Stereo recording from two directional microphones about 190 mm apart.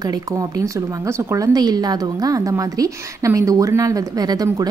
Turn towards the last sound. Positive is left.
turn(degrees=-20)  # may be behind; listen again after turning